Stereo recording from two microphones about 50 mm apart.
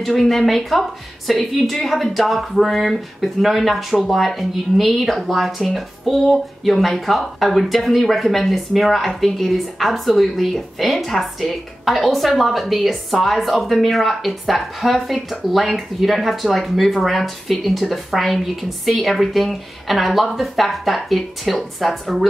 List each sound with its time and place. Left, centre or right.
0.0 s speech: centre